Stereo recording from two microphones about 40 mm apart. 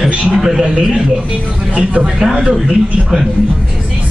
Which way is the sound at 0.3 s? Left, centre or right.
Centre.